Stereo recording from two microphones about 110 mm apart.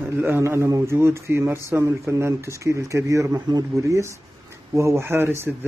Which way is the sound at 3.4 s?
40° right (ahead or behind).